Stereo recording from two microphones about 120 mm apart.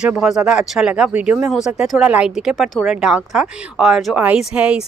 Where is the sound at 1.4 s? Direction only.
5° right (ahead or behind).